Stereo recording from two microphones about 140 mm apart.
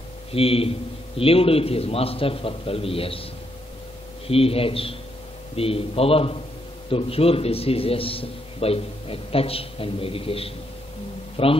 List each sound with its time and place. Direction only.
0.3 s a man's voice: 45° left (ahead or behind)
4.3 s a man's voice: 45° left (ahead or behind)